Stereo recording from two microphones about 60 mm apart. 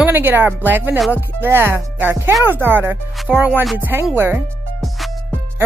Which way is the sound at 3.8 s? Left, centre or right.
Right.